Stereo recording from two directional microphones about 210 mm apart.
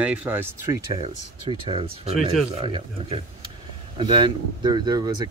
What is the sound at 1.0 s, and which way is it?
Speech, 25° right (ahead or behind).